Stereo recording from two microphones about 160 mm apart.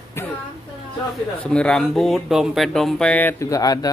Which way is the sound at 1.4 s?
5° left (ahead or behind).